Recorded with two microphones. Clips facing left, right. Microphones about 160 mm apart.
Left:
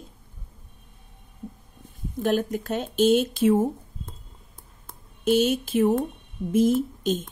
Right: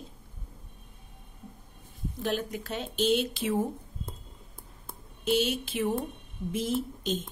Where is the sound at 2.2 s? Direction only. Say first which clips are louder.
Left 8 dB; 50° left (ahead or behind).